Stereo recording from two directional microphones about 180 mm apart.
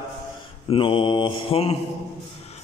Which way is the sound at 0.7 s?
30° left (ahead or behind).